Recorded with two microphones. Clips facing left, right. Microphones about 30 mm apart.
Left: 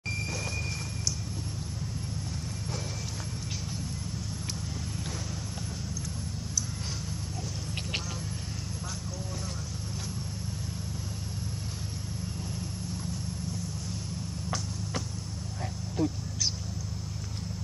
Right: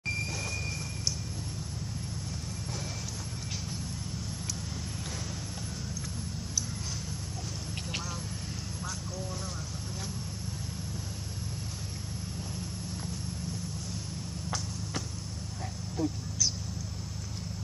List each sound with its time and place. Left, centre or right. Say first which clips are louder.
16.0 s speech: left 3 dB; left